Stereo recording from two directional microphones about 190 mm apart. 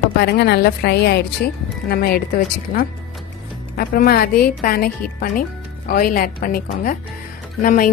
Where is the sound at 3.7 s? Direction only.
55° left (ahead or behind).